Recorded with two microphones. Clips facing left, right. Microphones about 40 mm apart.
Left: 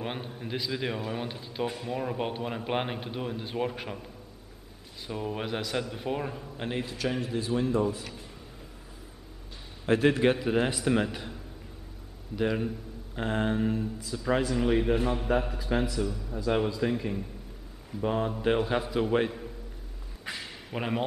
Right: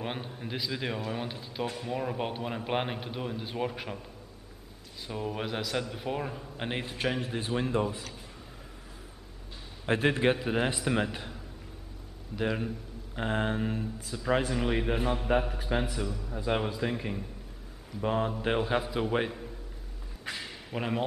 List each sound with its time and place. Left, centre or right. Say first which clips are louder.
0.0 s a man's voice: left 1 dB; centre
5.0 s a man's voice: left 1 dB; centre
7.0 s a man's voice: even; right
9.8 s a man's voice: left 3 dB; right
10.3 s a man's voice: left 2 dB; centre
12.4 s a man's voice: left 3 dB; centre
14.1 s a man's voice: left 1 dB; centre
16.4 s a man's voice: left 3 dB; right
16.8 s a man's voice: left 3 dB; centre
20.2 s a sound: even; centre